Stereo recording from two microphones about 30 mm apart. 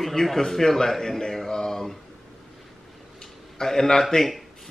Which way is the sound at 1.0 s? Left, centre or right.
Centre.